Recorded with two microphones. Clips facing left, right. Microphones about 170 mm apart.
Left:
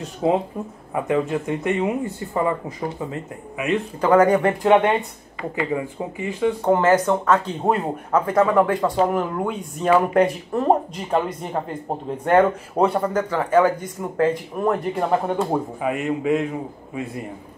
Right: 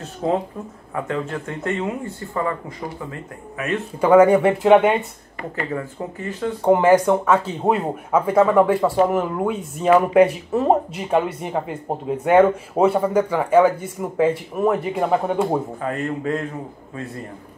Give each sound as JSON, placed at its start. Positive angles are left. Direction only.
{"t": 0.0, "sound": "speech", "side_deg": 10}
{"t": 4.0, "sound": "speech", "side_deg": -10}
{"t": 5.6, "sound": "speech", "side_deg": 15}
{"t": 6.6, "sound": "speech", "side_deg": -10}
{"t": 15.8, "sound": "speech", "side_deg": 10}